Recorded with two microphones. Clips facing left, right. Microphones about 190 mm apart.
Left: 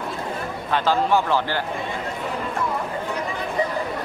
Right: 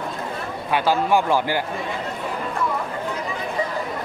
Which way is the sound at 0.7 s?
10° right (ahead or behind).